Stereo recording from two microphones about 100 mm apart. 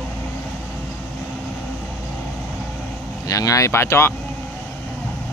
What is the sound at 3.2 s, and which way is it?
Speech, 35° left (ahead or behind).